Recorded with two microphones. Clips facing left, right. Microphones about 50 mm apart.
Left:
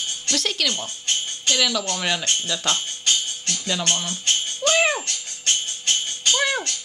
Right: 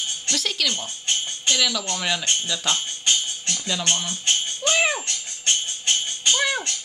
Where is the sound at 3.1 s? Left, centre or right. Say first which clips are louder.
Even; centre.